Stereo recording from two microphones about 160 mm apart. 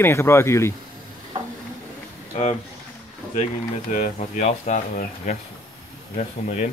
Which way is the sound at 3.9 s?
50° left (ahead or behind).